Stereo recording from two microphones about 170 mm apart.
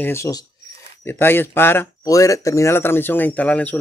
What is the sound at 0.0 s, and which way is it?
Speech, 15° left (ahead or behind).